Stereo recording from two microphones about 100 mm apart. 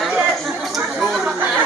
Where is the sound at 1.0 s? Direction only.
5° right (ahead or behind).